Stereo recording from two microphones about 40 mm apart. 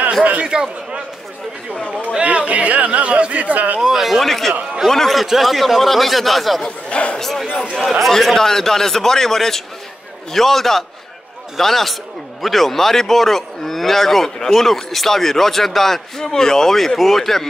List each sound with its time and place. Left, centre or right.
0.2 s speech: right
0.5 s a man's voice: centre
2.2 s speech: right
3.8 s speech: centre
6.6 s speech: left
7.2 s speech: centre
8.4 s speech: centre